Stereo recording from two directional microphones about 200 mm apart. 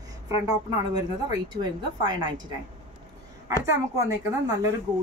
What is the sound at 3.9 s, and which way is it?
Speech, 20° right (ahead or behind).